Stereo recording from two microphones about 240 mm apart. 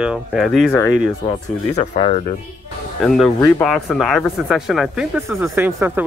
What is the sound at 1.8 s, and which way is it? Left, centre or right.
Speech, left.